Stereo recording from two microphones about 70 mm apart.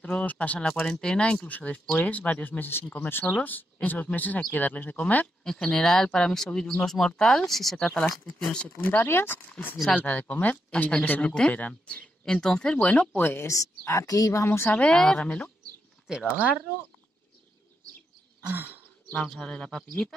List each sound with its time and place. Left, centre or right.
0.0 s speech: centre
0.7 s speech: centre
5.4 s speech: centre
8.8 s speech: left
13.5 s speech: left
14.7 s speech: centre
18.4 s a sound: right
19.2 s speech: centre